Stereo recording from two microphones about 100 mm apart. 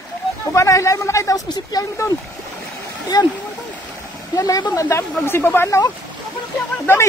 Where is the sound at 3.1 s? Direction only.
40° left (ahead or behind).